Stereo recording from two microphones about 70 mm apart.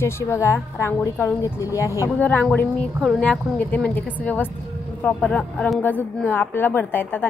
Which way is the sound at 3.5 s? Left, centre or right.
Left.